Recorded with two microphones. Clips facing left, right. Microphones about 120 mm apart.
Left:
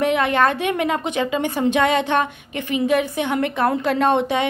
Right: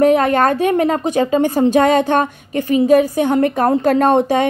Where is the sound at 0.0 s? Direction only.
40° right (ahead or behind).